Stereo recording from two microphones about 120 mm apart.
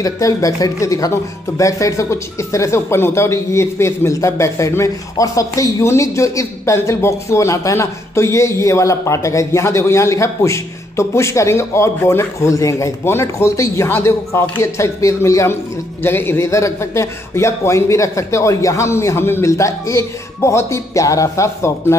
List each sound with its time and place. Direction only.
0.0 s a man's voice: 30° left (ahead or behind)